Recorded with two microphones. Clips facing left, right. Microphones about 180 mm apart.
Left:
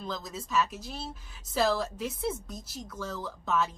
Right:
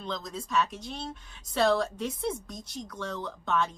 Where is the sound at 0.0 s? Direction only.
5° left (ahead or behind).